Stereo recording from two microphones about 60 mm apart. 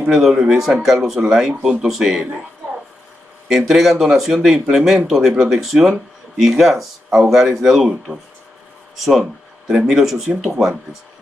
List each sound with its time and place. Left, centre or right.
0.1 s speech: centre
3.4 s speech: centre
8.9 s a sound: centre
9.8 s speech: centre